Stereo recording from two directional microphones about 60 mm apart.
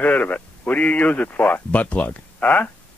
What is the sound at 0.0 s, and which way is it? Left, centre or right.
Speech, left.